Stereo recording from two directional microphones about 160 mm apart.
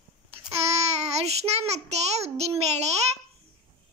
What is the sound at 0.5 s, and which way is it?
Child singing, 40° right (ahead or behind).